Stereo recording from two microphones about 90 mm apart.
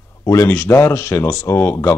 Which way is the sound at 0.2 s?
35° left (ahead or behind).